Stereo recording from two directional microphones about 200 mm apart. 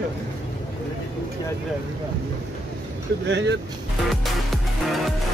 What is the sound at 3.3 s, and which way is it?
Speech, 60° right (ahead or behind).